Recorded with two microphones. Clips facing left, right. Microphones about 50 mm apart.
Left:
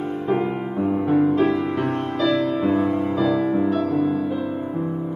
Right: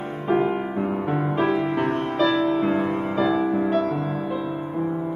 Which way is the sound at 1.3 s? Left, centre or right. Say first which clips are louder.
Left 2 dB; right.